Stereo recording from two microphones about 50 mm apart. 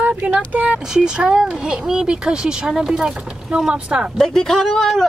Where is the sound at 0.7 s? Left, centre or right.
Centre.